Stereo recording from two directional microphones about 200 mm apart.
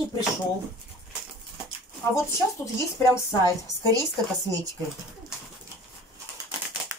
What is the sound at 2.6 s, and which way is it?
Speech, 15° left (ahead or behind).